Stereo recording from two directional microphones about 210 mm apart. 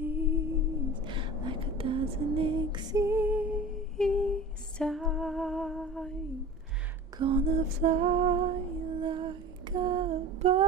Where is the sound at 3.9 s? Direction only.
5° left (ahead or behind).